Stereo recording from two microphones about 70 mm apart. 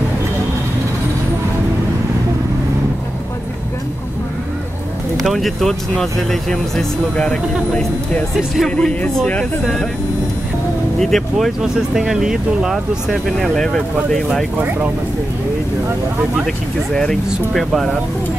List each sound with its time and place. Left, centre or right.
5.1 s speech: centre
8.6 s speech: centre
11.0 s speech: centre
16.9 s speech: centre